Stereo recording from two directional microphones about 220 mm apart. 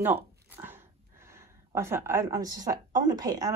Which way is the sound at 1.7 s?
10° right (ahead or behind).